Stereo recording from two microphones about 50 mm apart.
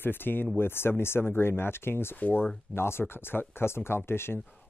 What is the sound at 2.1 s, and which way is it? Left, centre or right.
Speech, left.